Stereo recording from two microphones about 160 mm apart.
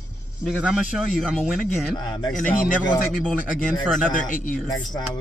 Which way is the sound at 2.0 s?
25° left (ahead or behind).